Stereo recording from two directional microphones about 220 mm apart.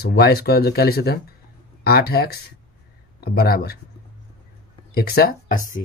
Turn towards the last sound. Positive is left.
turn(degrees=40)  # may be behind; listen again after turning